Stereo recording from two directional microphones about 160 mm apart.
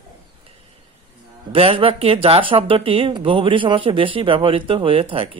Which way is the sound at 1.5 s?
35° right (ahead or behind).